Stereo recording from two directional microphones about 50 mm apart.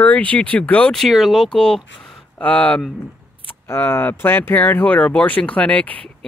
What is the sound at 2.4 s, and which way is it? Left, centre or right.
Speech, left.